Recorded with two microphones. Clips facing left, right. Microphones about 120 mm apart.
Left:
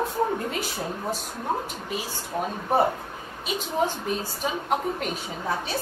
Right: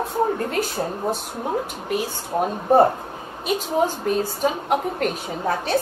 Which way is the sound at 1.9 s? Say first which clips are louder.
Right 7 dB; 50° right (ahead or behind).